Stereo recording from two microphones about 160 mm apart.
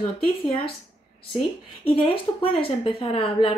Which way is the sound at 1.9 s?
35° left (ahead or behind).